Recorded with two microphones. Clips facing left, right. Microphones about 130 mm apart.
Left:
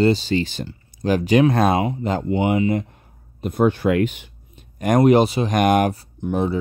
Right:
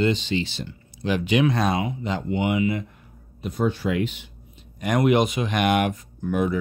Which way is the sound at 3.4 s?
55° left (ahead or behind).